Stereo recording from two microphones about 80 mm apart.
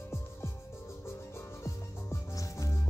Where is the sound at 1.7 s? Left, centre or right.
Left.